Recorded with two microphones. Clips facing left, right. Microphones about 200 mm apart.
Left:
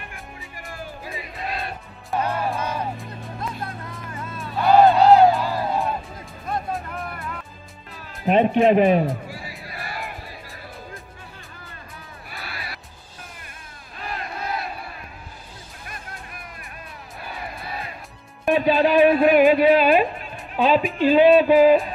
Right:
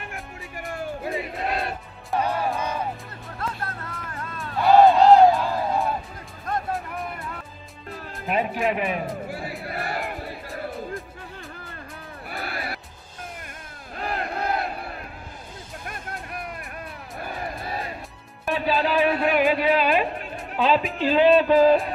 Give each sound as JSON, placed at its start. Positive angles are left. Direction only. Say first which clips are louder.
{"t": 1.4, "sound": "music", "louder": "right 1 dB", "side_deg": -70}
{"t": 2.3, "sound": "music", "louder": "even", "side_deg": 0}
{"t": 8.3, "sound": "a man's voice", "louder": "left 8 dB", "side_deg": 30}
{"t": 9.7, "sound": "music", "louder": "right 5 dB", "side_deg": -60}
{"t": 12.3, "sound": "music", "louder": "right 6 dB", "side_deg": -50}
{"t": 13.9, "sound": "crowd", "louder": "right 4 dB", "side_deg": -60}
{"t": 17.2, "sound": "music", "louder": "right 3 dB", "side_deg": -45}
{"t": 18.4, "sound": "music", "louder": "left 6 dB", "side_deg": 20}